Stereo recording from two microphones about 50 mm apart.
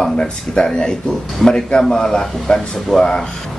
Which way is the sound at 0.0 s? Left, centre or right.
Centre.